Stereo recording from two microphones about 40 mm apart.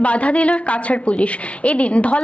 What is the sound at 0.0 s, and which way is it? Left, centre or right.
A woman's voice, left.